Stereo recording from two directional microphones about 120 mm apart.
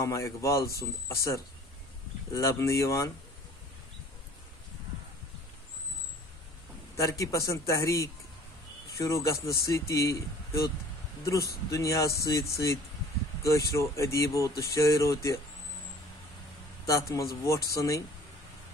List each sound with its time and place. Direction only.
0.0 s speech: 25° left (ahead or behind)
7.0 s speech: 25° left (ahead or behind)
16.8 s speech: 25° left (ahead or behind)